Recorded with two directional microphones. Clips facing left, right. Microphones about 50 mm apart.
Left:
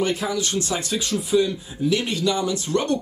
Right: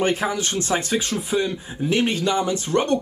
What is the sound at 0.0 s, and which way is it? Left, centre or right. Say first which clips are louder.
Speech: right 2 dB; right.